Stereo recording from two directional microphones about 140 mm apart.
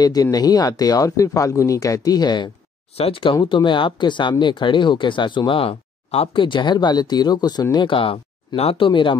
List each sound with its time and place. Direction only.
0.0 s speech: 25° left (ahead or behind)